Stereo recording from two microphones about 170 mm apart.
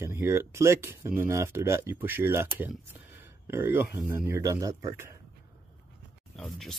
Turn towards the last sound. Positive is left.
turn(degrees=0)  # may be behind; listen again after turning